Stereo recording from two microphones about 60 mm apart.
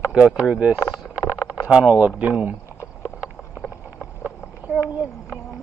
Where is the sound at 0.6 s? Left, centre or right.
Right.